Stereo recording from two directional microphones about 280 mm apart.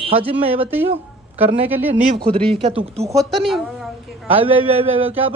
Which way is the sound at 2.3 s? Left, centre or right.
Centre.